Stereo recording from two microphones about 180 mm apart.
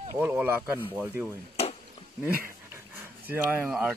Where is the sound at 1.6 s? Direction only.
35° left (ahead or behind).